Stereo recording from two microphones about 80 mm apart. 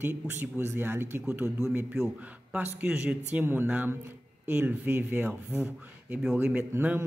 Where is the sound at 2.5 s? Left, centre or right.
Centre.